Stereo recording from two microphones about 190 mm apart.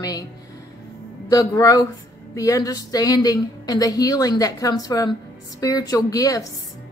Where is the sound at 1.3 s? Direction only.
20° left (ahead or behind).